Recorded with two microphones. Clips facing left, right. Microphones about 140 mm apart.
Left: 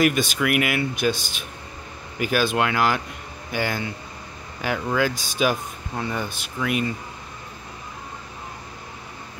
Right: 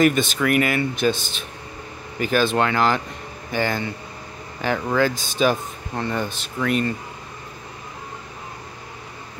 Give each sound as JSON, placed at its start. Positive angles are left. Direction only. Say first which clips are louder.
{"t": 0.0, "sound": "speech", "louder": "right 2 dB", "side_deg": 10}